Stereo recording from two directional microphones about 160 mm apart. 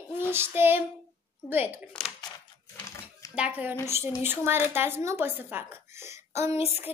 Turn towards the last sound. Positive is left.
turn(degrees=-15)  # may be behind; listen again after turning